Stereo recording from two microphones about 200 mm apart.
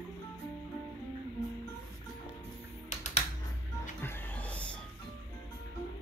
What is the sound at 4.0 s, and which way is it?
Music, 10° left (ahead or behind).